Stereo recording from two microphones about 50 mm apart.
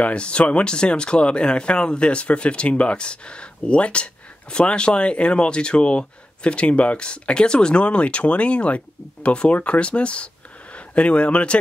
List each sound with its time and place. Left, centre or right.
0.0 s speech: left